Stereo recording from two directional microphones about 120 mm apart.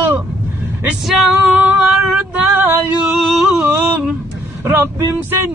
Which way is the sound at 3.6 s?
15° right (ahead or behind).